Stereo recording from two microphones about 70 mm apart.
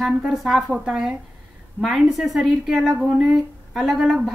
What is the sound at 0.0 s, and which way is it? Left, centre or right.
Speech, centre.